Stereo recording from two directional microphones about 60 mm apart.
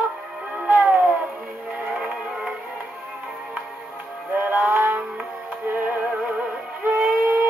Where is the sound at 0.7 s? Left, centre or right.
Right.